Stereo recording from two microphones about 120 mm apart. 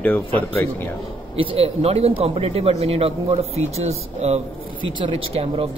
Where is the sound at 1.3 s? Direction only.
50° right (ahead or behind).